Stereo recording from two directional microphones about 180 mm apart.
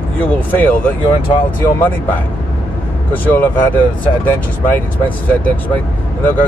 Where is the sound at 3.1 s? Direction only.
10° left (ahead or behind).